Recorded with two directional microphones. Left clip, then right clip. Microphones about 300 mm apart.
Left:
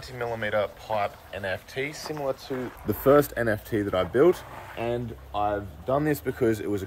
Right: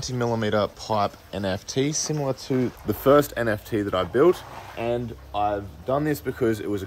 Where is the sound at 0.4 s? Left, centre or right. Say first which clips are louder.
Right 3 dB; centre.